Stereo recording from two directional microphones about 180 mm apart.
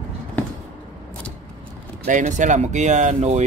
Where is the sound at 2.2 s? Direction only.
40° right (ahead or behind).